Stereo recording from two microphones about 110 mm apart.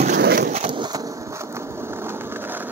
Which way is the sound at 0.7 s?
45° right (ahead or behind).